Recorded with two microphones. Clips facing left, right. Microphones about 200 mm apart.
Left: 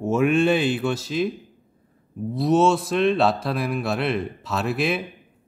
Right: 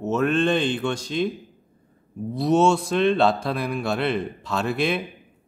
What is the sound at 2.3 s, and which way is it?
Speech, centre (ahead or behind).